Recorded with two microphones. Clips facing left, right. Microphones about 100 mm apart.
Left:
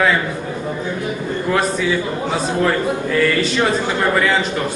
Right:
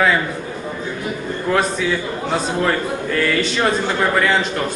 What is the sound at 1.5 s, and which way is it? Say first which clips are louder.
A man's voice: even; centre (ahead or behind).